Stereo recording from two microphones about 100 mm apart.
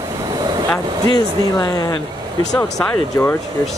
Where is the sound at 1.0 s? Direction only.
40° left (ahead or behind).